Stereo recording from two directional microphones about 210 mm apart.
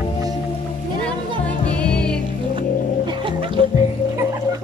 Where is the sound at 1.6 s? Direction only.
5° left (ahead or behind).